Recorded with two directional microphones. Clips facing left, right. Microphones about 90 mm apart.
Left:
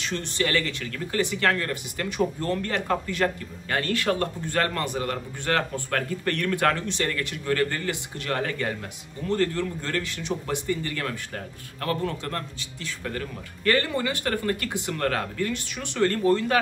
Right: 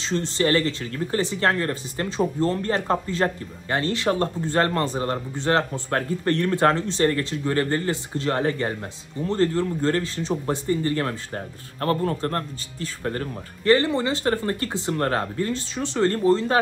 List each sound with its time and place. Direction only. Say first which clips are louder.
0.0 s speech: right 5 dB; 25° right (ahead or behind)
13.7 s speech: right 5 dB; 25° right (ahead or behind)